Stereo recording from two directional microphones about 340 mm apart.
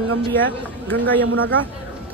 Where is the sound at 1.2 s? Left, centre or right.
Right.